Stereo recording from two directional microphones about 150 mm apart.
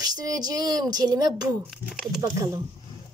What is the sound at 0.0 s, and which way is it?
A woman's voice, 25° right (ahead or behind).